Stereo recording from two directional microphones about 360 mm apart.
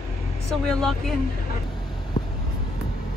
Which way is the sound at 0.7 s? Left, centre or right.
Centre.